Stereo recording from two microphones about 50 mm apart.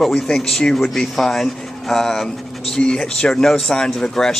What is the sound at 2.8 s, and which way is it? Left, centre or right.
Speech, centre.